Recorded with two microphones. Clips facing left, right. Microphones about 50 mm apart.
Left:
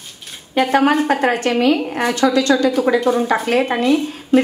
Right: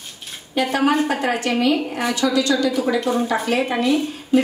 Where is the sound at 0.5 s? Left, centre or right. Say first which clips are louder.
Left 4 dB; left.